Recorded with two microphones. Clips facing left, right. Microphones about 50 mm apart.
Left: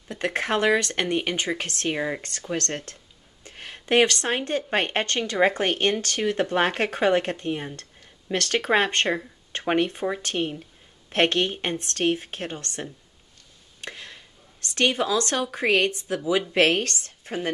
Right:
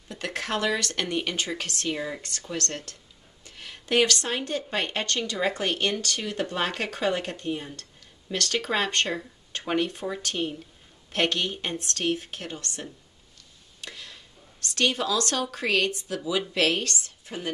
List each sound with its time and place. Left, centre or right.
0.1 s speech: left
13.7 s a sound: left
15.5 s speech: left